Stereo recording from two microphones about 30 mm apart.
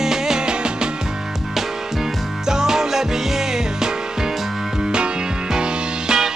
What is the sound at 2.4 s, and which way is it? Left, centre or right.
Music, centre.